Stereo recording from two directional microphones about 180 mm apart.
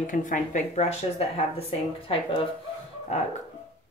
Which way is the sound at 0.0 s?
45° left (ahead or behind).